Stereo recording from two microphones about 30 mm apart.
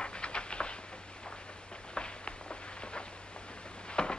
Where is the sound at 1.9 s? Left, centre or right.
Left.